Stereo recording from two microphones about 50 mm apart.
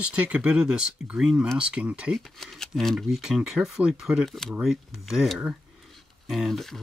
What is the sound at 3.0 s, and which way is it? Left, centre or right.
Speech, centre.